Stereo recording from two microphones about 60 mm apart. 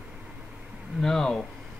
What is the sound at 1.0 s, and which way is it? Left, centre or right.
Speech, centre.